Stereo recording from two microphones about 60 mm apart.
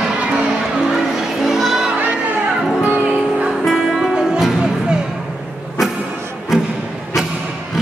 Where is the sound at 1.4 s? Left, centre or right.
Centre.